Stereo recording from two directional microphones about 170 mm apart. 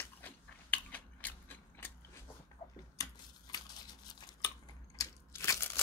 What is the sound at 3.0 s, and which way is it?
Scissors, 20° left (ahead or behind).